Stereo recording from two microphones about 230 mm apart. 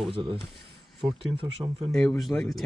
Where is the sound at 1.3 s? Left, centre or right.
Right.